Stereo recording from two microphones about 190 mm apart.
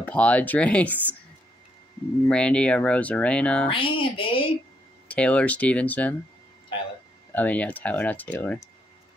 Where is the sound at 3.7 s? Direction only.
25° left (ahead or behind).